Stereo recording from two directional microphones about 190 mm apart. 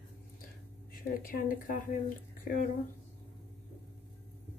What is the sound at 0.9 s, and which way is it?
Speech, 50° left (ahead or behind).